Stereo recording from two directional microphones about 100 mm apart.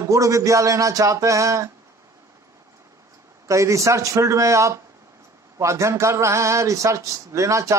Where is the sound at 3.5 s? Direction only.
30° right (ahead or behind).